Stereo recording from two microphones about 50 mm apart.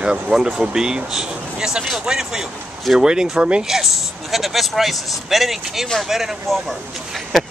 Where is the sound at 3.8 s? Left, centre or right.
Centre.